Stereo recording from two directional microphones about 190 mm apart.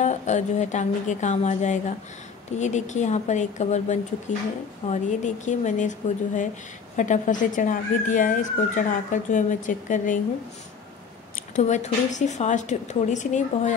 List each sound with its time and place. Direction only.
0.0 s a woman's voice: 40° left (ahead or behind)
11.5 s a woman's voice: 40° left (ahead or behind)